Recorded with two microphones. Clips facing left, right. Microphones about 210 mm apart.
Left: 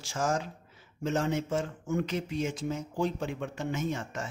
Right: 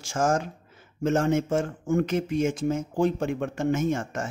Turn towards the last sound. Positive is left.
turn(degrees=-50)  # may be behind; listen again after turning